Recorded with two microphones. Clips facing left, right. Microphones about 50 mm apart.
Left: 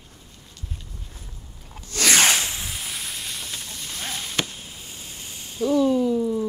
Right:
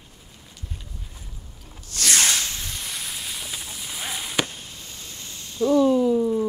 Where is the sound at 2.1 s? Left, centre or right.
Left.